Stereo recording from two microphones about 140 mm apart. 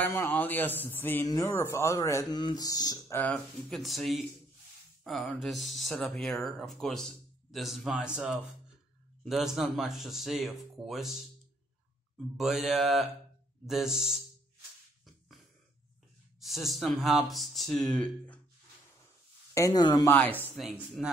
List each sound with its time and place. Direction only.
0.0 s a man's voice: 15° left (ahead or behind)
1.2 s speech: 25° left (ahead or behind)
3.7 s speech: centre (ahead or behind)
12.4 s speech: 5° right (ahead or behind)
16.3 s speech: centre (ahead or behind)
19.5 s speech: 25° left (ahead or behind)
20.1 s a man's voice: 15° left (ahead or behind)
21.0 s speech: centre (ahead or behind)